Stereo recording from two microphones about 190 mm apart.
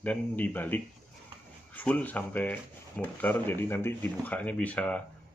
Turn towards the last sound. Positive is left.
turn(degrees=5)  # may be behind; listen again after turning